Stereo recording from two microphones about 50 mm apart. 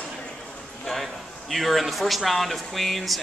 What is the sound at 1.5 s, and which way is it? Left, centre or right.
Speech, centre.